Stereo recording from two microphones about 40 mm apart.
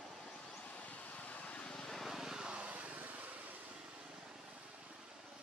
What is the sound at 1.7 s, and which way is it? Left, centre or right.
Vehicle, centre.